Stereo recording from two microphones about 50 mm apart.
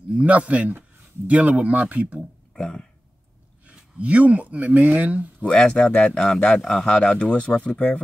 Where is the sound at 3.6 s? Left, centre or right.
Right.